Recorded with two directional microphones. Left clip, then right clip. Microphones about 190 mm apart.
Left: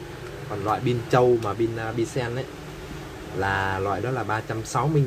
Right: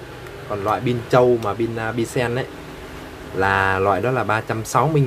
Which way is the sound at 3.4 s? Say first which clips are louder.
Right 8 dB; 10° right (ahead or behind).